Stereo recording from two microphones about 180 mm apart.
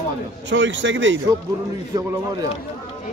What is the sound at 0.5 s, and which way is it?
Speech, 90° right.